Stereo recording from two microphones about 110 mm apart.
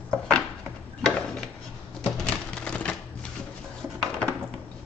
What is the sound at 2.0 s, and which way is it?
Typewriter, 10° left (ahead or behind).